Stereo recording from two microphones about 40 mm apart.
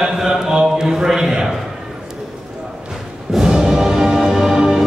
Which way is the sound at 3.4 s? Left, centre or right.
Centre.